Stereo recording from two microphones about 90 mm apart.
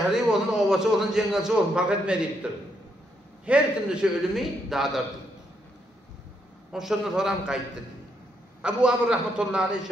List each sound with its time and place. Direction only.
0.1 s a man's voice: 5° right (ahead or behind)
6.7 s a man's voice: 5° right (ahead or behind)
8.6 s a man's voice: 10° right (ahead or behind)